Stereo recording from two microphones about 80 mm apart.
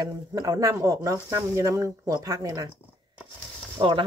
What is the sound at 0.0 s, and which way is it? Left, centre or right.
Speech, right.